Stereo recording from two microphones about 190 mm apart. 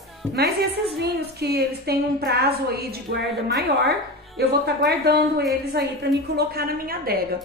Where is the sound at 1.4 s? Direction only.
55° right (ahead or behind).